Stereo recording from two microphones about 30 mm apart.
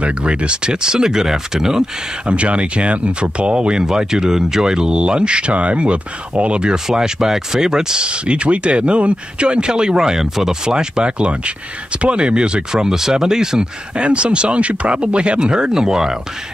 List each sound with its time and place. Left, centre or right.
0.0 s speech: right; by 1.9 s centre
2.2 s speech: right
3.8 s speech: right
6.6 s speech: right
8.1 s speech: right
11.1 s speech: right
13.9 s speech: right; by 16.2 s centre